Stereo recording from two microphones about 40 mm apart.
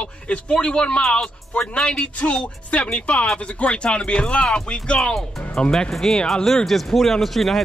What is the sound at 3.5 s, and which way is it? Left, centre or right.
A man's voice, left.